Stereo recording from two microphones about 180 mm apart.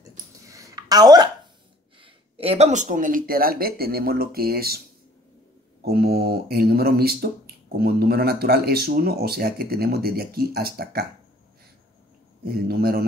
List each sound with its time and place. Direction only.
0.4 s a sound: 20° right (ahead or behind)
2.0 s speech: 30° right (ahead or behind); by 11.1 s 60° right (ahead or behind)
12.4 s speech: 60° right (ahead or behind)